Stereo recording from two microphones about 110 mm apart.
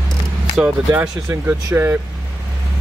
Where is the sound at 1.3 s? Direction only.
25° right (ahead or behind).